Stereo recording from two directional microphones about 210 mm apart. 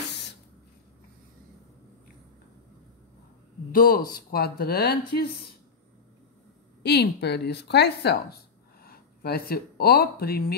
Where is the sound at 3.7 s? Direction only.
45° left (ahead or behind).